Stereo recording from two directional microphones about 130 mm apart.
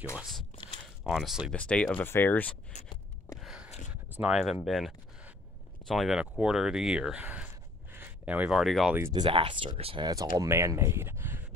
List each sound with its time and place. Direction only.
0.1 s speech: 5° right (ahead or behind)
1.5 s speech: 10° left (ahead or behind)
3.3 s a sound: 5° right (ahead or behind)
4.6 s speech: centre (ahead or behind)
9.1 s speech: 35° right (ahead or behind)
10.0 s speech: 30° right (ahead or behind)